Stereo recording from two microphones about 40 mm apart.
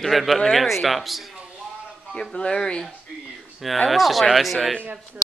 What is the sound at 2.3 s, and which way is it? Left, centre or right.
Speech, centre.